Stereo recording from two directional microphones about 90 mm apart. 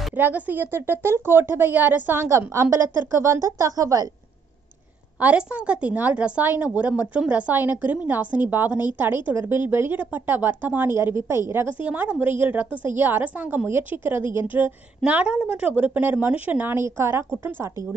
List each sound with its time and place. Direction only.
0.2 s speech: 20° right (ahead or behind)
2.2 s a woman's voice: 35° right (ahead or behind)
5.2 s speech: 15° right (ahead or behind)
15.0 s speech: 15° right (ahead or behind)